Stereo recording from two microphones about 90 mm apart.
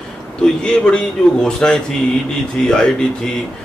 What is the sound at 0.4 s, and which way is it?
A man's voice, 5° left (ahead or behind).